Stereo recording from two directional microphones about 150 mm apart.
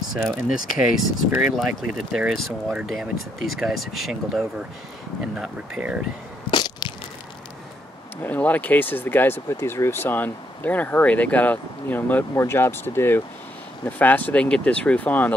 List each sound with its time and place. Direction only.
0.2 s speech: centre (ahead or behind)
6.5 s crushing: 30° left (ahead or behind)
8.2 s speech: 10° left (ahead or behind)